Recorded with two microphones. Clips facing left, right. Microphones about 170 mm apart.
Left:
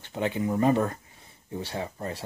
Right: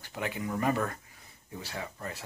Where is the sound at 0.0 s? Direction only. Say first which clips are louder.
Left 7 dB; 25° left (ahead or behind).